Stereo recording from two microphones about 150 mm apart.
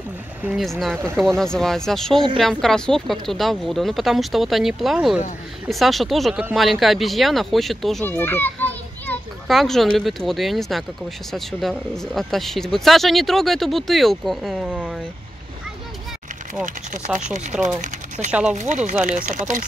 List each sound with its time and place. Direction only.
0.4 s a woman's voice: 5° right (ahead or behind)
8.0 s children playing: 15° left (ahead or behind)
9.5 s a woman's voice: centre (ahead or behind)
11.9 s a woman's voice: centre (ahead or behind)
16.6 s speech: 60° right (ahead or behind)